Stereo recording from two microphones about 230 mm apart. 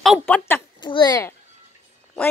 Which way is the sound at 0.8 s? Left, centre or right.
Centre.